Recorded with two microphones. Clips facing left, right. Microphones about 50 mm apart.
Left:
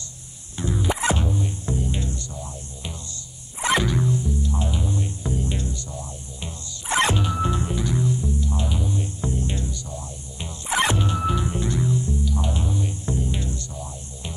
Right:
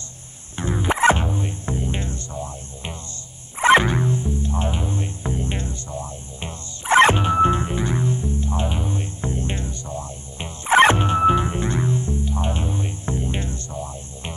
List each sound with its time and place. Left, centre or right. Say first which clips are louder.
0.6 s music: right 5 dB; right